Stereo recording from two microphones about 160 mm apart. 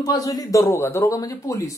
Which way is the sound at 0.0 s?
20° left (ahead or behind).